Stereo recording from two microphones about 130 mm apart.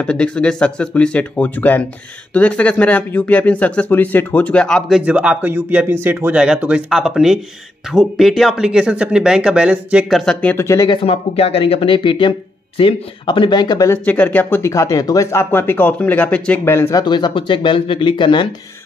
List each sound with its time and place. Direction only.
0.0 s speech: 10° left (ahead or behind)
10.6 s speech: 25° left (ahead or behind)
10.9 s speech: 45° left (ahead or behind); by 13.9 s 30° left (ahead or behind)
14.0 s speech: 10° left (ahead or behind)
17.0 s speech: 35° left (ahead or behind)